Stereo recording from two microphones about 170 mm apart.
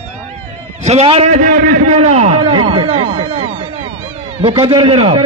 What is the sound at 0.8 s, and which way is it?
A man's voice, 35° right (ahead or behind).